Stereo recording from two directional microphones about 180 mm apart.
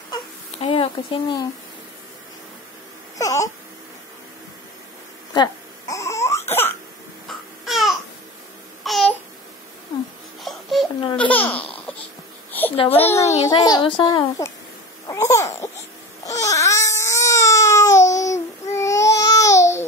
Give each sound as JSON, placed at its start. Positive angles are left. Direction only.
{"t": 0.6, "sound": "a woman's voice", "side_deg": 30}
{"t": 3.2, "sound": "wail", "side_deg": 20}
{"t": 5.3, "sound": "crying", "side_deg": 20}
{"t": 7.2, "sound": "baby cry", "side_deg": 0}
{"t": 8.8, "sound": "babbling", "side_deg": 0}
{"t": 10.4, "sound": "baby cry", "side_deg": 0}
{"t": 11.1, "sound": "laughter", "side_deg": 10}
{"t": 12.7, "sound": "a sound", "side_deg": 30}
{"t": 13.5, "sound": "a woman's voice", "side_deg": 25}
{"t": 15.0, "sound": "a sound", "side_deg": 15}
{"t": 16.3, "sound": "baby cry", "side_deg": 15}